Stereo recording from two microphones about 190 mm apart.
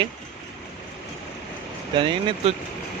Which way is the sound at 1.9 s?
25° right (ahead or behind).